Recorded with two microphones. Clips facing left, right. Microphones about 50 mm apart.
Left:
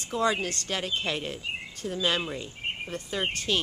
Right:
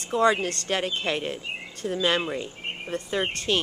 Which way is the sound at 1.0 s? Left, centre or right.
Centre.